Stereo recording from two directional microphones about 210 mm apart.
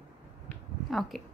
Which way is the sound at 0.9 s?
Centre (ahead or behind).